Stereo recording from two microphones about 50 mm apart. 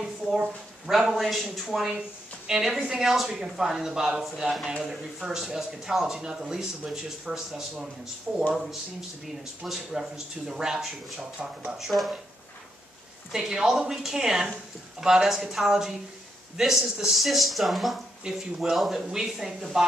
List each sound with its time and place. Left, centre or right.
0.8 s a woman's voice: centre
9.7 s speech: centre
13.3 s speech: centre